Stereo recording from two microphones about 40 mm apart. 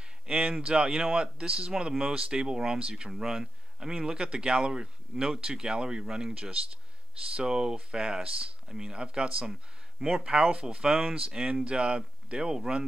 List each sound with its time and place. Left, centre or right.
0.3 s speech: right